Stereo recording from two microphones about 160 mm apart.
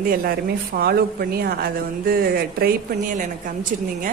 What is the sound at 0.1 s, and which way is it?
Speech, 70° right (ahead or behind).